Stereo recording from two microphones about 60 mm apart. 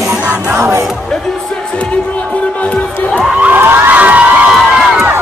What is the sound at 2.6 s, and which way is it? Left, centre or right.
Crowd, left.